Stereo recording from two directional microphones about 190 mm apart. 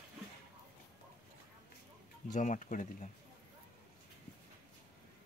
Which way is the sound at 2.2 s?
40° left (ahead or behind).